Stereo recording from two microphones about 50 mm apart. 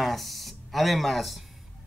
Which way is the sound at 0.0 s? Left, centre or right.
Centre.